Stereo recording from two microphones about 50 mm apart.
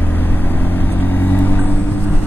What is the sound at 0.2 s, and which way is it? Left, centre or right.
Vehicle, left.